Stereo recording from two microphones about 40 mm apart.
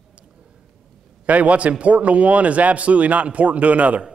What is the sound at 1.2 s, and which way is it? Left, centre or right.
A man's voice, right.